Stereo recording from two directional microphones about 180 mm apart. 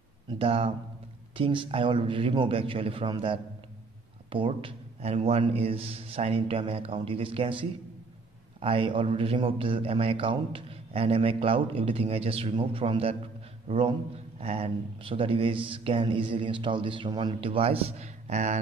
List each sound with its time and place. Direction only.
0.4 s a man's voice: 30° right (ahead or behind)